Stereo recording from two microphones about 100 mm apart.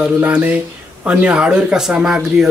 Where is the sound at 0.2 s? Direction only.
15° right (ahead or behind).